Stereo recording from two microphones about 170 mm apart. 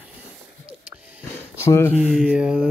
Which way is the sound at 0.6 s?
5° right (ahead or behind).